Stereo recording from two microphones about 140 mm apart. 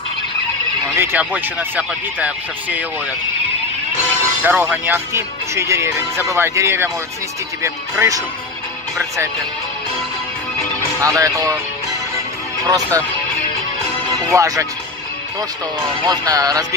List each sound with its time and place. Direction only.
0.9 s speech: 15° right (ahead or behind)
4.4 s speech: 10° right (ahead or behind)
11.0 s speech: 25° right (ahead or behind)
12.6 s speech: 25° right (ahead or behind)
14.3 s speech: 20° right (ahead or behind)
16.1 s speech: 25° right (ahead or behind)